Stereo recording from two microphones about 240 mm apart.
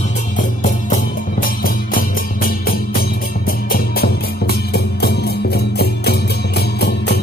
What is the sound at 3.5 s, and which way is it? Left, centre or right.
Music, left.